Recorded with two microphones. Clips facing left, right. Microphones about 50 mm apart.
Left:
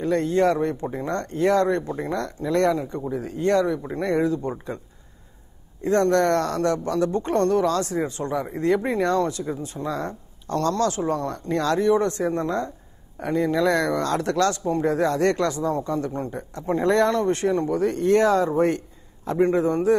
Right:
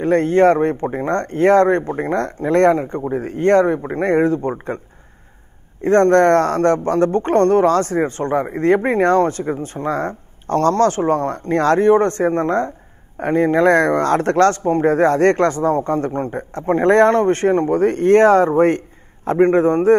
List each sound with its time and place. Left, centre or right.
0.0 s speech: right
5.8 s a man's voice: right